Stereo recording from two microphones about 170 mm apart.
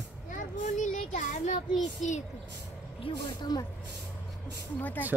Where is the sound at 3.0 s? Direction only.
25° left (ahead or behind).